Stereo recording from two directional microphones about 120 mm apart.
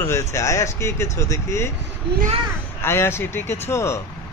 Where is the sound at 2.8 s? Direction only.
20° left (ahead or behind).